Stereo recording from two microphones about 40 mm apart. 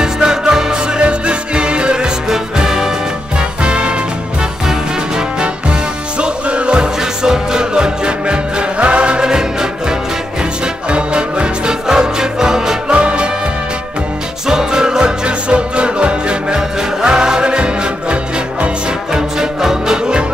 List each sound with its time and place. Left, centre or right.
0.0 s music: centre
14.5 s music: centre
19.1 s music: centre